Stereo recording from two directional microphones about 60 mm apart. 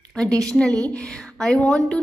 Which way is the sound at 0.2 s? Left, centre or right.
Centre.